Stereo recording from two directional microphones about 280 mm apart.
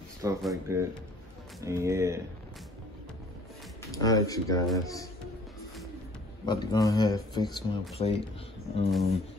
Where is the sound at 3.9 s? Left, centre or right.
Centre.